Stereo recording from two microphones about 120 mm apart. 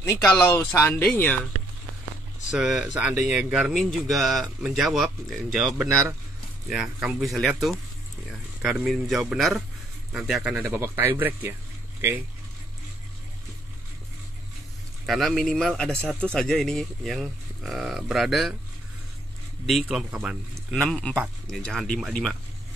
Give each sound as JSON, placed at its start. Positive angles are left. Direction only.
{"t": 0.0, "sound": "speech", "side_deg": 25}
{"t": 2.5, "sound": "speech", "side_deg": -5}
{"t": 5.9, "sound": "speech", "side_deg": -25}
{"t": 6.7, "sound": "speech", "side_deg": -5}
{"t": 10.6, "sound": "speech", "side_deg": -20}
{"t": 15.0, "sound": "speech", "side_deg": 0}
{"t": 19.6, "sound": "speech", "side_deg": 0}
{"t": 20.5, "sound": "speech", "side_deg": 0}